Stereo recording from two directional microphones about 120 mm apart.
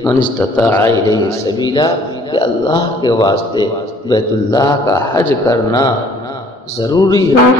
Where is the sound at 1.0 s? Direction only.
30° left (ahead or behind).